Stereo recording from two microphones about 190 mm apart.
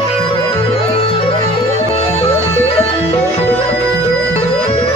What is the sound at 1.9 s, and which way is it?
Music, 30° left (ahead or behind).